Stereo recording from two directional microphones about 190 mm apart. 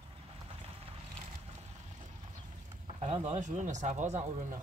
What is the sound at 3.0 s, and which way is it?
Speech, 35° right (ahead or behind).